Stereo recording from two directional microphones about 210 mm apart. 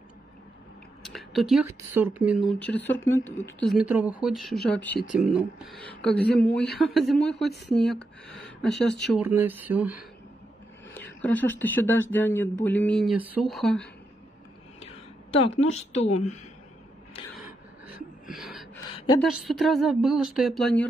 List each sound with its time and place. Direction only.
1.0 s a sound: centre (ahead or behind)
1.7 s speech: 10° right (ahead or behind)
2.6 s speech: 10° left (ahead or behind)
3.7 s speech: 5° right (ahead or behind)
11.0 s speech: 10° left (ahead or behind)
15.7 s a woman's voice: 30° left (ahead or behind)
17.8 s a sound: centre (ahead or behind)
19.2 s speech: centre (ahead or behind)